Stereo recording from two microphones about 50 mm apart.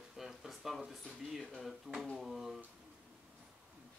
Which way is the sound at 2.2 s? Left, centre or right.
Centre.